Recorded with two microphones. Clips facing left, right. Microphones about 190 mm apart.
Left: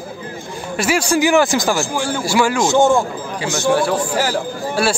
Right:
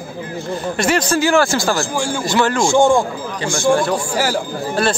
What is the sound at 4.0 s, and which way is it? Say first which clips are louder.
Speech: even; 10° right (ahead or behind).